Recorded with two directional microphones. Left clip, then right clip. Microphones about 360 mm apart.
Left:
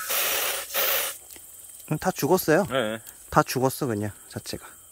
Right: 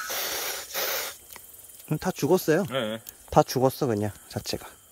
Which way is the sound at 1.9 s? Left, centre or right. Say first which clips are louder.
Left 1 dB; centre.